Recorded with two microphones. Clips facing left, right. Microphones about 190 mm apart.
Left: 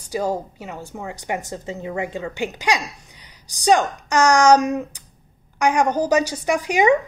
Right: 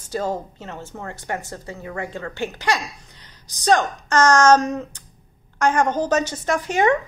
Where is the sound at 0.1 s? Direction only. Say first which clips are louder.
Left 2 dB; 10° left (ahead or behind).